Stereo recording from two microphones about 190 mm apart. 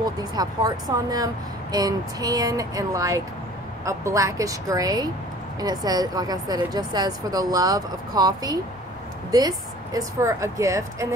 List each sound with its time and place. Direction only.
0.0 s a woman's voice: 20° right (ahead or behind)